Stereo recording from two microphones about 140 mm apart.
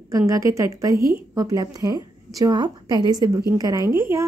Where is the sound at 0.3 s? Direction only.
20° right (ahead or behind).